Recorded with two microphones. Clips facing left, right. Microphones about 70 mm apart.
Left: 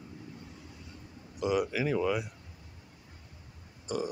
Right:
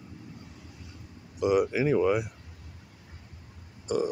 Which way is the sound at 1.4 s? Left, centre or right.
Centre.